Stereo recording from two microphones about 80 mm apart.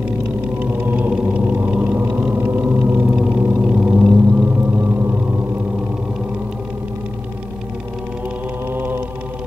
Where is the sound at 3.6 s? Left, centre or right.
Centre.